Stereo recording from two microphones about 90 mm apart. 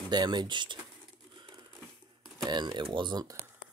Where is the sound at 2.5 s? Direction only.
60° right (ahead or behind).